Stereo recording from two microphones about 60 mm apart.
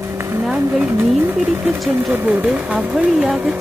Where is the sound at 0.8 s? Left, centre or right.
Right; by 3.6 s centre.